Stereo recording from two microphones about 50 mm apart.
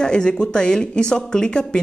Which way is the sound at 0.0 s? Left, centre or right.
Centre.